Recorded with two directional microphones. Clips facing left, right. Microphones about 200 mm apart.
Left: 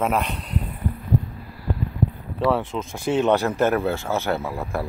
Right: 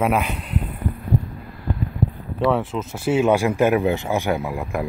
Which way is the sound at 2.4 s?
Centre (ahead or behind).